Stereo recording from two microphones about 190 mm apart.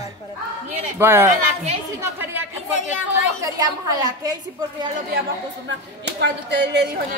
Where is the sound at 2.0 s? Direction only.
10° right (ahead or behind).